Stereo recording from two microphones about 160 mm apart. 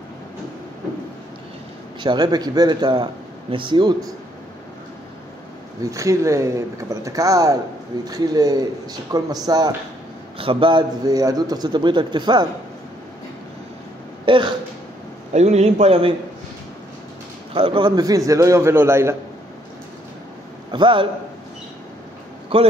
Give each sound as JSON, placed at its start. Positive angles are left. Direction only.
{"t": 2.0, "sound": "a man's voice", "side_deg": -25}
{"t": 5.9, "sound": "a man's voice", "side_deg": -20}
{"t": 10.3, "sound": "a man's voice", "side_deg": -35}
{"t": 14.2, "sound": "speech", "side_deg": -30}
{"t": 15.3, "sound": "a man's voice", "side_deg": -45}
{"t": 17.6, "sound": "a man's voice", "side_deg": -35}
{"t": 20.7, "sound": "a man's voice", "side_deg": -30}
{"t": 22.5, "sound": "a man's voice", "side_deg": -35}